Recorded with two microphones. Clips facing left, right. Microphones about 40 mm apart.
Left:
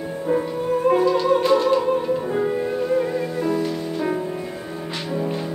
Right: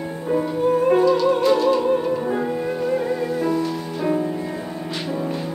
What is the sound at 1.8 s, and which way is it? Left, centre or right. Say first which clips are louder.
Music: right 1 dB; centre.